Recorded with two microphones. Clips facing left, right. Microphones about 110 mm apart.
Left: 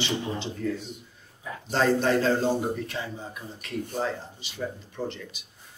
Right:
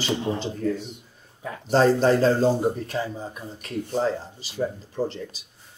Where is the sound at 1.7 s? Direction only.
35° right (ahead or behind).